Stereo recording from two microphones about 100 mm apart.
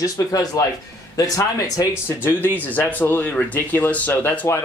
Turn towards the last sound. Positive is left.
turn(degrees=20)  # may be behind; listen again after turning